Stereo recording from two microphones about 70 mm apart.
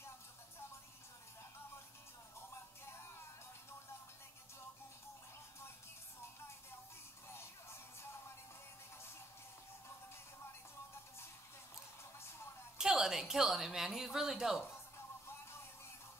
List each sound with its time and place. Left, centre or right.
2.5 s music: left
12.7 s a woman's voice: centre